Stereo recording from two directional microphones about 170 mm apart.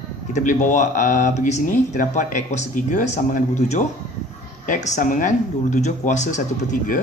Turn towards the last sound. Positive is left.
turn(degrees=50)  # may be behind; listen again after turning